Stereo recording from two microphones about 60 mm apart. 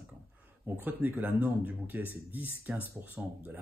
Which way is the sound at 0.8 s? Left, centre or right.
Right.